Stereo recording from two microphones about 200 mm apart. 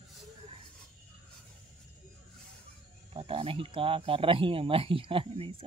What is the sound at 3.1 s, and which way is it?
Speech, 25° right (ahead or behind).